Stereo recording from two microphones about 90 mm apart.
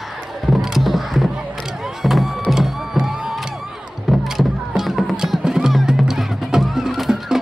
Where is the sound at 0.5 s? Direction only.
Centre (ahead or behind).